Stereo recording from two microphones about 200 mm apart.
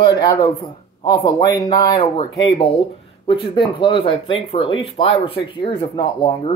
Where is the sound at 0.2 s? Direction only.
20° left (ahead or behind).